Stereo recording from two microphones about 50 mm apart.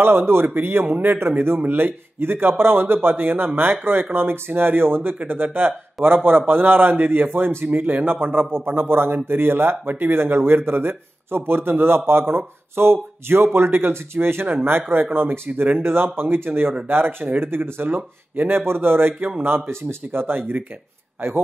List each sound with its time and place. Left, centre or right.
0.0 s a man's voice: right
19.7 s speech: right